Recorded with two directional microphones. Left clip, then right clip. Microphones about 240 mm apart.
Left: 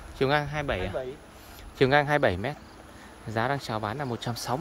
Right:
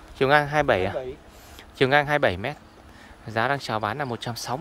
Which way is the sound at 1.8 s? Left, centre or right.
Centre.